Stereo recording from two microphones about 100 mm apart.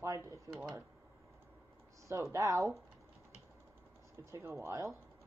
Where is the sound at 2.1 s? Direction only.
30° right (ahead or behind).